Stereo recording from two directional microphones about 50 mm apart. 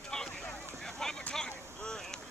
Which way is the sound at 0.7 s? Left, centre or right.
Centre.